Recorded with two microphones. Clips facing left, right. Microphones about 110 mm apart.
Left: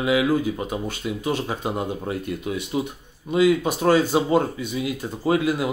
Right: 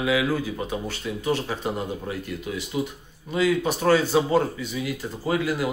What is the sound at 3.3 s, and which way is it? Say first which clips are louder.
A man's voice: left 4 dB; 20° left (ahead or behind).